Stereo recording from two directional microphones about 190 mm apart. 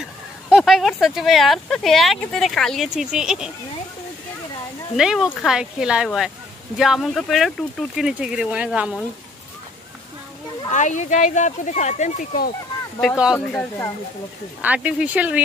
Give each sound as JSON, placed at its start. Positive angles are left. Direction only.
{"t": 0.5, "sound": "speech", "side_deg": 0}
{"t": 4.9, "sound": "speech", "side_deg": 0}
{"t": 10.7, "sound": "speech", "side_deg": 40}
{"t": 13.5, "sound": "speech", "side_deg": 10}
{"t": 14.6, "sound": "speech", "side_deg": -5}